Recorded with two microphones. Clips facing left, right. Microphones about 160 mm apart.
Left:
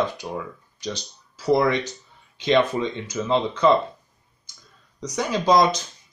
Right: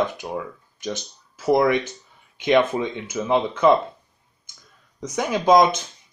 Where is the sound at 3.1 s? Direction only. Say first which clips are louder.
Right 2 dB; 15° right (ahead or behind).